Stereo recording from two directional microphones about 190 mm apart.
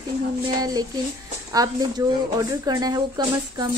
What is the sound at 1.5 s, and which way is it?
Speech, 20° right (ahead or behind).